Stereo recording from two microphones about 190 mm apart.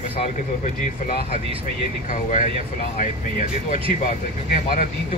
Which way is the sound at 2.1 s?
40° left (ahead or behind).